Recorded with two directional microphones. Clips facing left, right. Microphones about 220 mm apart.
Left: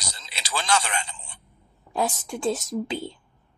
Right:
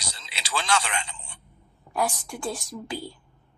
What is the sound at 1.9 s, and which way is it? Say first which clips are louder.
A woman's voice: left 1 dB; 20° left (ahead or behind).